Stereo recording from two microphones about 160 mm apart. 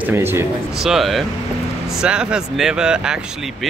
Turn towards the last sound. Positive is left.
turn(degrees=-5)  # may be behind; listen again after turning